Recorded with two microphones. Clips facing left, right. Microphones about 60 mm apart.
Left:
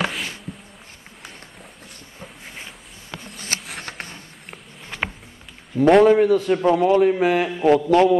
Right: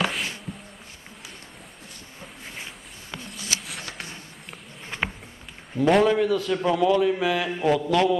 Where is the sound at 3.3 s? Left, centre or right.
Left.